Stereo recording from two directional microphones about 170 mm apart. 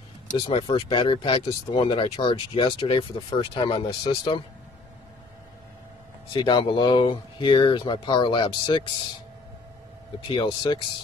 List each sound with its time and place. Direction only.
0.3 s speech: 30° left (ahead or behind)
6.3 s speech: 30° left (ahead or behind)
10.2 s speech: 30° left (ahead or behind)